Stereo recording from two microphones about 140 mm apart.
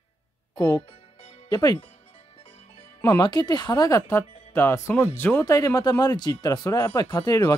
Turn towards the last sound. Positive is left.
turn(degrees=25)  # may be behind; listen again after turning